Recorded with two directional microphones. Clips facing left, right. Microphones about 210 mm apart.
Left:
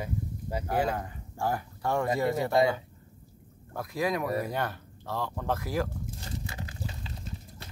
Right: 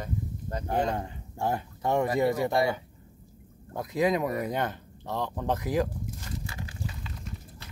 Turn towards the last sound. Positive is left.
turn(degrees=30)  # may be behind; listen again after turning